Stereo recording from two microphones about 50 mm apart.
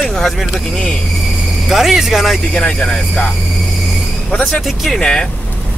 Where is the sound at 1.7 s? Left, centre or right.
Centre.